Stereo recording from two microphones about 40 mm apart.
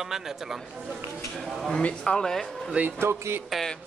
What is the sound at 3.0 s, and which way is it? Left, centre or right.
Speech, right.